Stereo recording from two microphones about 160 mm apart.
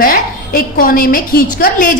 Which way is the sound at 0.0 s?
60° left (ahead or behind).